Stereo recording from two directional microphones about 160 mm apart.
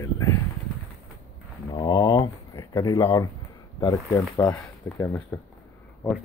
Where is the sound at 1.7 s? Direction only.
25° left (ahead or behind).